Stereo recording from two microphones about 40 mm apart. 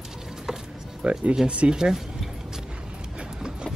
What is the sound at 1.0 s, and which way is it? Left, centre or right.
Speech, right.